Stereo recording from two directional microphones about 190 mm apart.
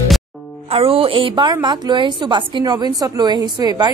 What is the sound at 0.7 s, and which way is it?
A woman's voice, 30° right (ahead or behind).